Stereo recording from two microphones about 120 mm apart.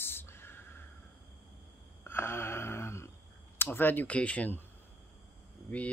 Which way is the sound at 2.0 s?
20° left (ahead or behind).